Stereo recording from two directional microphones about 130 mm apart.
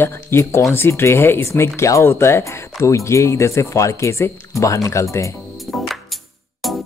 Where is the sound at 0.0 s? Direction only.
20° left (ahead or behind).